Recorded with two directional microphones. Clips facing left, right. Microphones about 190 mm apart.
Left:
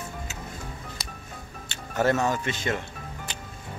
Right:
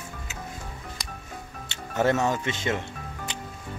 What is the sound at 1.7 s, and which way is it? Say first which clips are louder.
Music: even; 20° right (ahead or behind).